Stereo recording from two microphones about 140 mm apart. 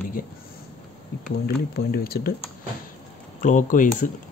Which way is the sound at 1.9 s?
90° left.